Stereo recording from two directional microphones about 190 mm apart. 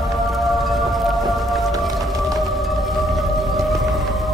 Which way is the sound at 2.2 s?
Centre (ahead or behind).